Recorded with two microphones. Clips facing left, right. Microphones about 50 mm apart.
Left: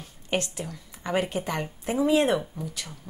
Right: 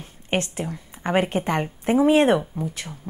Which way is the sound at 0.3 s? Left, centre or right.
Right.